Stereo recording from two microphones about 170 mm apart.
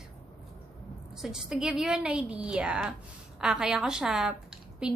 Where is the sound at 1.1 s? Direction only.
Centre (ahead or behind).